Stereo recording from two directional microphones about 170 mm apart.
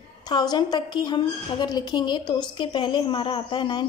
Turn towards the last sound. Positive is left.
turn(degrees=25)  # may be behind; listen again after turning